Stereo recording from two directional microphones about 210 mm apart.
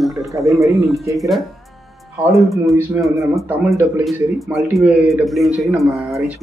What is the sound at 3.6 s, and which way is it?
Speech, 15° right (ahead or behind).